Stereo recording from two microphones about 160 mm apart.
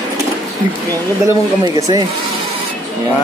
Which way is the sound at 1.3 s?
20° right (ahead or behind).